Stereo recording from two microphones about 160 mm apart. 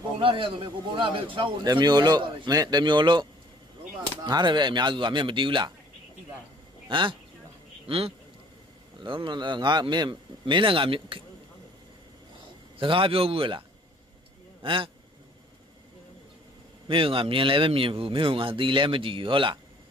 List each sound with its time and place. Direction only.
0.2 s a man's voice: 30° right (ahead or behind)
6.9 s a man's voice: 30° right (ahead or behind)
12.7 s speech: 35° right (ahead or behind)
16.8 s speech: 30° right (ahead or behind)